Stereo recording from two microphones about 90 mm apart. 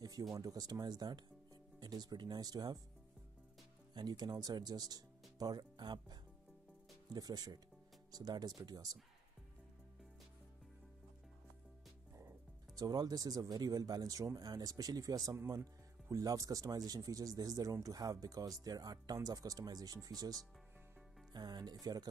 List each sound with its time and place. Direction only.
0.0 s speech: 45° right (ahead or behind)
3.9 s speech: 50° right (ahead or behind)
7.2 s speech: 45° right (ahead or behind)
12.7 s speech: 45° right (ahead or behind)